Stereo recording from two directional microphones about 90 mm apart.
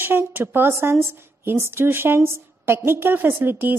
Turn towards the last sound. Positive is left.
turn(degrees=-25)  # may be behind; listen again after turning